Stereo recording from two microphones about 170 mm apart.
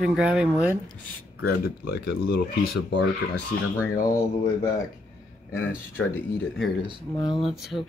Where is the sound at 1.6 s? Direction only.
65° left (ahead or behind).